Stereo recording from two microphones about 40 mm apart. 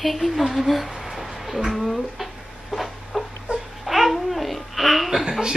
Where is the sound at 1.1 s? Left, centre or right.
Centre.